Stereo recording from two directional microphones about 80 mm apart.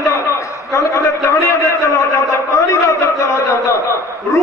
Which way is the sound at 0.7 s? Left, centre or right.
Left.